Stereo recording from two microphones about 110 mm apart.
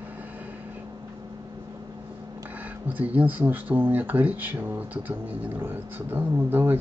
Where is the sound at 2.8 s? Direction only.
15° right (ahead or behind).